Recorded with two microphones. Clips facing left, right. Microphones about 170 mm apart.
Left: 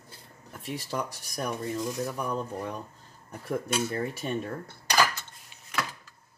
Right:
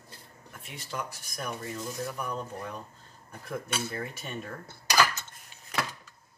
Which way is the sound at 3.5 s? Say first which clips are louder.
Left 5 dB; 35° left (ahead or behind).